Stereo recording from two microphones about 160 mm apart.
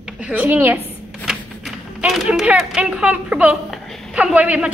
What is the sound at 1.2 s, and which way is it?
Speech, 5° right (ahead or behind).